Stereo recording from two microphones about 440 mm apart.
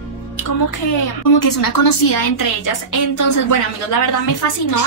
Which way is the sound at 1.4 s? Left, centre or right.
Left.